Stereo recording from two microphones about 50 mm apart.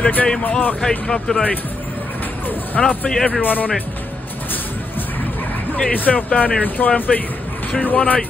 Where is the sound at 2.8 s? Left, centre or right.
Centre.